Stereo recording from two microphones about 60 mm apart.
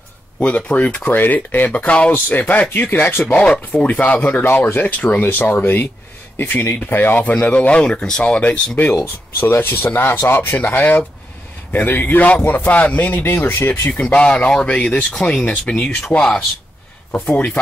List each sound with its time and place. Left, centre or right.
0.4 s speech: left
2.1 s speech: left
3.7 s speech: left
4.5 s speech: left
9.4 s speech: left
14.0 s speech: centre
17.1 s speech: centre